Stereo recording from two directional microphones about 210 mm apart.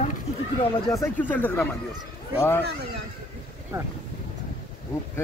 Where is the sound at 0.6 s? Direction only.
15° left (ahead or behind).